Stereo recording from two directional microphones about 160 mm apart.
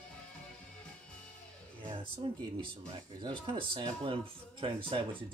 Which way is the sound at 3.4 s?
30° right (ahead or behind).